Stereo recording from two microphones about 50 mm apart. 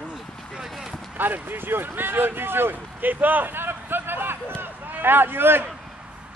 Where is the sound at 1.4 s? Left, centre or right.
Right.